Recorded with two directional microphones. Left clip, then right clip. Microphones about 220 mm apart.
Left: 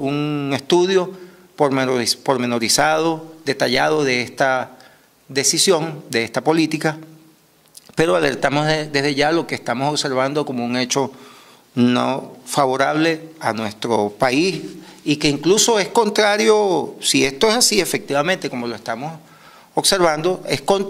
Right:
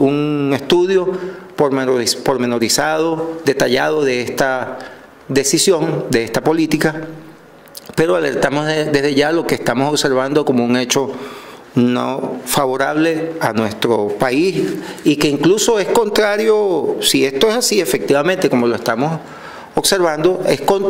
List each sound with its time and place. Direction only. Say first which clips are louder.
0.0 s a man's voice: right 7 dB; 30° left (ahead or behind)